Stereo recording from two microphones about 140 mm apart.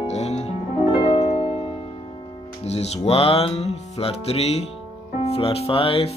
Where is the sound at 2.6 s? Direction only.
50° left (ahead or behind).